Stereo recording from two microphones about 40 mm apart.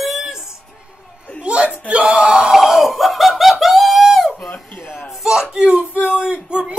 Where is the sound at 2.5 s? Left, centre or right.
Centre.